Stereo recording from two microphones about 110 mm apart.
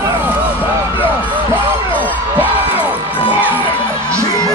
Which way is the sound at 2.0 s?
15° right (ahead or behind).